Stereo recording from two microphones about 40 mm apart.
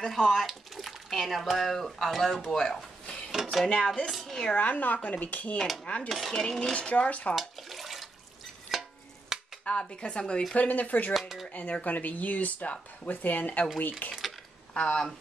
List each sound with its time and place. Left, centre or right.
0.0 s speech: centre
2.5 s speech: centre
4.1 s speech: centre
4.6 s speech: left
6.0 s speech: centre
6.7 s speech: left
7.3 s water: centre
8.7 s a sound: centre
9.3 s dishes: centre
9.7 s speech: left
10.5 s speech: left
11.1 s speech: centre
11.5 s speech: left
14.7 s speech: left